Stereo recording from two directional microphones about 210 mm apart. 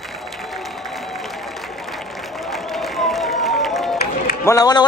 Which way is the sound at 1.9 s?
Centre (ahead or behind).